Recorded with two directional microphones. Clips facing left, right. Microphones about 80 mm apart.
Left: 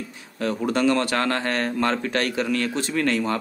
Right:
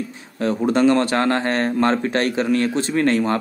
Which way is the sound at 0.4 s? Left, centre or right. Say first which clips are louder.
Right 5 dB; right.